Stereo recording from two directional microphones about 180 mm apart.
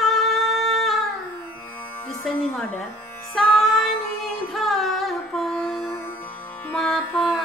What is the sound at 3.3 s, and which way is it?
Music, centre (ahead or behind).